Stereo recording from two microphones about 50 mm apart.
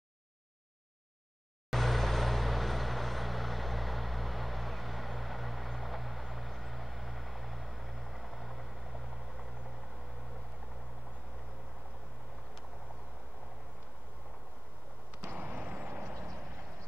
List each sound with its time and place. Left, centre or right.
1.7 s vehicle: centre
15.2 s vehicle: right